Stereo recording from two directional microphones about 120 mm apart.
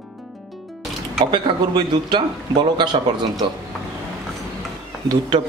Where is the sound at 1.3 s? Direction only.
40° right (ahead or behind).